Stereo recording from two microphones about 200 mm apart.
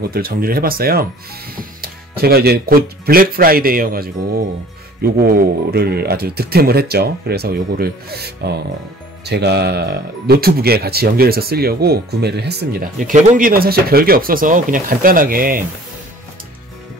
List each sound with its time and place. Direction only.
0.1 s speech: 50° right (ahead or behind)